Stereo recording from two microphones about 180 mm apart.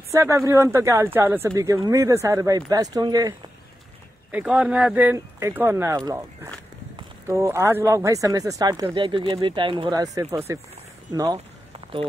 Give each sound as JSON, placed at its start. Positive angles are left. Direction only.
{"t": 0.1, "sound": "speech", "side_deg": -15}
{"t": 4.3, "sound": "a man's voice", "side_deg": -10}